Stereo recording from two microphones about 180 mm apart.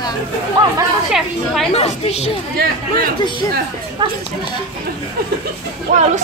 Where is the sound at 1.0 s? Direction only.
Centre (ahead or behind).